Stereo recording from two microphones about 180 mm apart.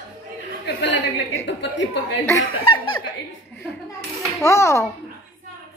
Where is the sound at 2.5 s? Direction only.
25° left (ahead or behind).